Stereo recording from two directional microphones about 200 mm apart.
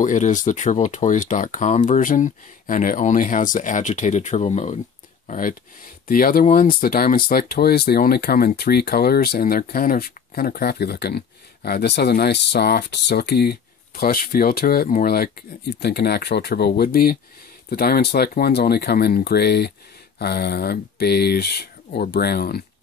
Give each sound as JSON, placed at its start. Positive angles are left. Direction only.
{"t": 0.0, "sound": "speech", "side_deg": 40}